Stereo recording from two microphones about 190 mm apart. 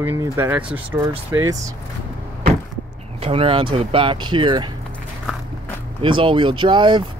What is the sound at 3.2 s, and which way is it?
Speech, 30° right (ahead or behind).